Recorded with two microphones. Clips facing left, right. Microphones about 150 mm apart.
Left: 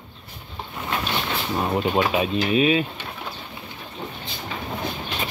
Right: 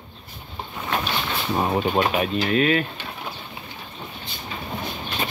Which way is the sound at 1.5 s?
20° right (ahead or behind).